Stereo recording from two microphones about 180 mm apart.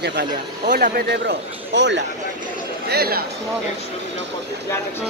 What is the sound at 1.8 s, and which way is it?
Speech, 80° right.